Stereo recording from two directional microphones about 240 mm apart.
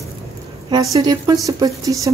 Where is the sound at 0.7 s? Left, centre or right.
Centre.